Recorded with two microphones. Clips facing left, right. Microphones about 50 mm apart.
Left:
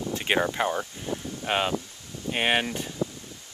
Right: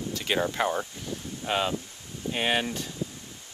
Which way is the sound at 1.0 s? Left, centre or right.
Left.